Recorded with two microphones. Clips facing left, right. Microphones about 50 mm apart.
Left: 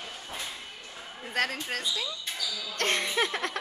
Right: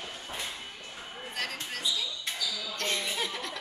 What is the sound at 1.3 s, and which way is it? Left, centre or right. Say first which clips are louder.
Chuckle: left 7 dB; left.